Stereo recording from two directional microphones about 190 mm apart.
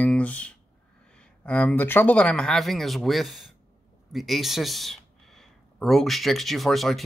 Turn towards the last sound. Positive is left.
turn(degrees=0)  # may be behind; listen again after turning